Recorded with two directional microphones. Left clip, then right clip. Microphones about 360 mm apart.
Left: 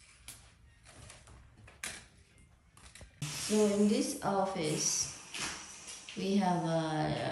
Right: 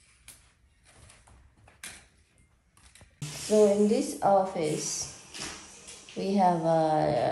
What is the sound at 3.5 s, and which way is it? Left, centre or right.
Speech, centre.